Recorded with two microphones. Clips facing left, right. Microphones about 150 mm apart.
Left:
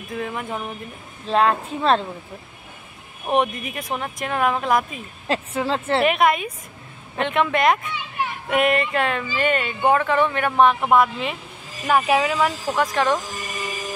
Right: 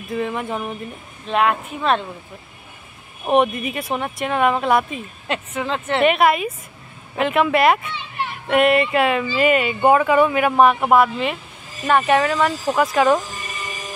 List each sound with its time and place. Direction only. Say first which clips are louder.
0.1 s speech: right 4 dB; centre (ahead or behind)
1.2 s speech: even; 30° left (ahead or behind)
3.3 s speech: right 4 dB; centre (ahead or behind)
5.3 s speech: left 1 dB; 30° left (ahead or behind)
5.9 s speech: right 3 dB; centre (ahead or behind)
12.6 s speech: right 4 dB; 10° right (ahead or behind)